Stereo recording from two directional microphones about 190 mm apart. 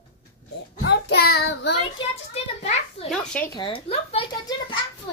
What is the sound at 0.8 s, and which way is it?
Child singing, 60° left (ahead or behind).